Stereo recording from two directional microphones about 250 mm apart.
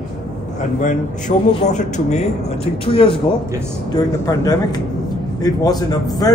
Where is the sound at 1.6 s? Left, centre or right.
Left.